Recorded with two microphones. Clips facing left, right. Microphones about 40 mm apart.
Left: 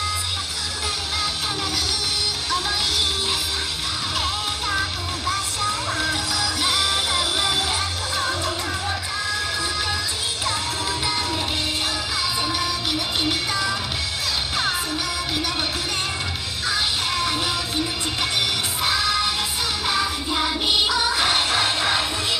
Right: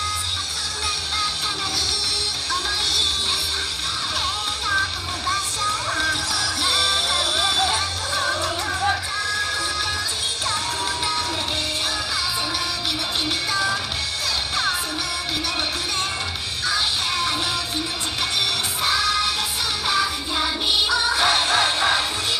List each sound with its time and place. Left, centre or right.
4.7 s music: centre
7.1 s music: centre
8.3 s music: centre
17.1 s music: centre
19.9 s music: centre
21.5 s music: right